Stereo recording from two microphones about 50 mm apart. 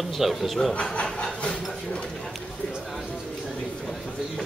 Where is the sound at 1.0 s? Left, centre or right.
Centre.